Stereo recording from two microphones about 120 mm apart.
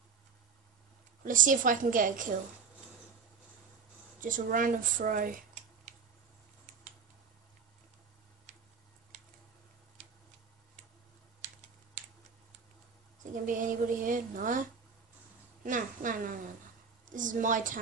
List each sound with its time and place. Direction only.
1.2 s speech: 90° right
4.2 s speech: 90° right
13.3 s a woman's voice: 90° right